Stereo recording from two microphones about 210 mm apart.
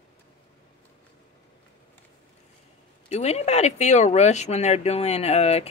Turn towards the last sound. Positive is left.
turn(degrees=30)  # may be behind; listen again after turning